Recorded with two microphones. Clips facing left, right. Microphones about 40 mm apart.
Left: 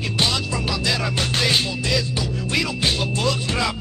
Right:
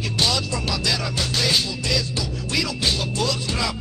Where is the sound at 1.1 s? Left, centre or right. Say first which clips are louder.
Left 2 dB; left.